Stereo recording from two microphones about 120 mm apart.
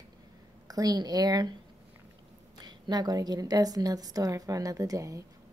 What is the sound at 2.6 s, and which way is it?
A woman's voice, 35° right (ahead or behind).